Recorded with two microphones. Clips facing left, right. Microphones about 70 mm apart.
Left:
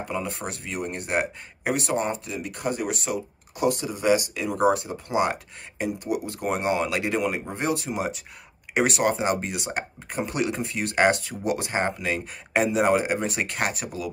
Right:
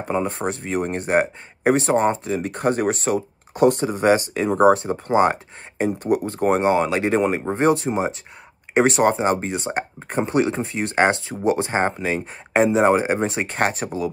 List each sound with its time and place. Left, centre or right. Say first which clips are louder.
0.0 s speech: right 7 dB; right